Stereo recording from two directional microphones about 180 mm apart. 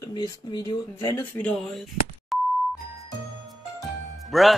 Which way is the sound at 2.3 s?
Centre (ahead or behind).